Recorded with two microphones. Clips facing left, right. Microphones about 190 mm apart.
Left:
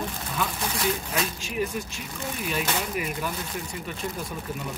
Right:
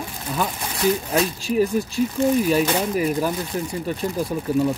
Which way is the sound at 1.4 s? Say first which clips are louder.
Right 9 dB; 35° right (ahead or behind).